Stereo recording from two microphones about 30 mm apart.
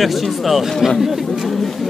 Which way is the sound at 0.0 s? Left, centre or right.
Centre.